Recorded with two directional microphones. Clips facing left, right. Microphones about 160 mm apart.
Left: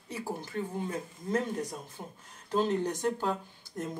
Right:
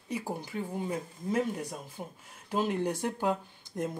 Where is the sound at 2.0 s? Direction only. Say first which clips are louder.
Right 2 dB; 5° right (ahead or behind).